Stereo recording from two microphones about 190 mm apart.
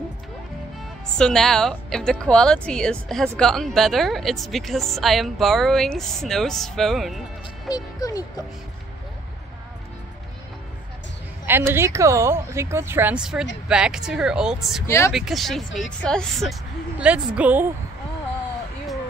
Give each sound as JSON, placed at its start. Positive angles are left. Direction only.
{"t": 1.1, "sound": "a woman's voice", "side_deg": 5}
{"t": 7.6, "sound": "speech", "side_deg": 20}
{"t": 11.4, "sound": "a woman's voice", "side_deg": -10}
{"t": 14.9, "sound": "speech", "side_deg": 15}
{"t": 15.1, "sound": "a woman's voice", "side_deg": 0}